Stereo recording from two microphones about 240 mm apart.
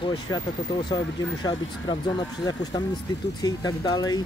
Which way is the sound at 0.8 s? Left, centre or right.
Centre.